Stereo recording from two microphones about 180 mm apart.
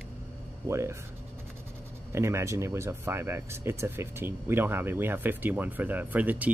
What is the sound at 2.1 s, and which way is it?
Speech, 15° right (ahead or behind).